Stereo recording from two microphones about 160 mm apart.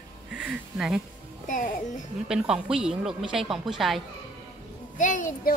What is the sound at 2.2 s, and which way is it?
Speech, 5° right (ahead or behind).